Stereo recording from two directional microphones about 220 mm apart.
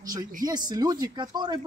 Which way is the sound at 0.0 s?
15° right (ahead or behind).